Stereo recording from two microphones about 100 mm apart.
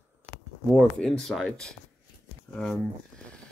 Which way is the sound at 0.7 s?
Centre (ahead or behind).